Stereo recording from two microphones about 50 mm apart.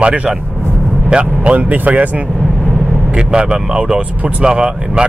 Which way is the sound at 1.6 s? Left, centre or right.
Right.